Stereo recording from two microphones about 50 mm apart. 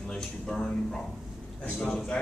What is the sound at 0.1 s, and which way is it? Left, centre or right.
A man's voice, centre.